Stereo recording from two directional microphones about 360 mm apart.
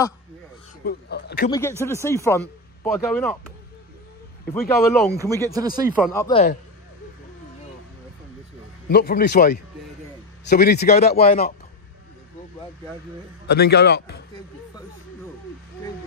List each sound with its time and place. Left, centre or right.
0.8 s speech: left
1.8 s speech: centre
4.6 s speech: centre
5.4 s speech: centre
6.2 s speech: centre
8.9 s speech: left
13.5 s speech: left